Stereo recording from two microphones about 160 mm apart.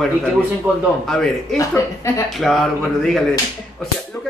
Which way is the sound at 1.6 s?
20° left (ahead or behind).